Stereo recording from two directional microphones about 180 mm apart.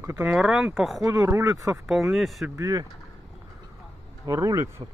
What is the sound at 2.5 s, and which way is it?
Speech, 20° right (ahead or behind).